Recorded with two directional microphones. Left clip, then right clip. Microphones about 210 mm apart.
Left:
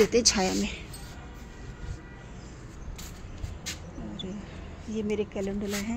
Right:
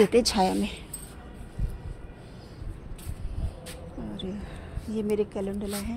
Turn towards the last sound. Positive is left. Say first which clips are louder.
# left 1 dB
turn(degrees=-5)  # may be behind; listen again after turning